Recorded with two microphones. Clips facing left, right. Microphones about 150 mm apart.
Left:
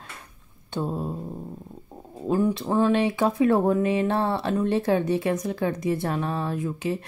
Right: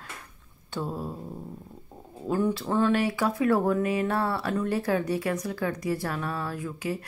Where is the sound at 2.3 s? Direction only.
20° left (ahead or behind).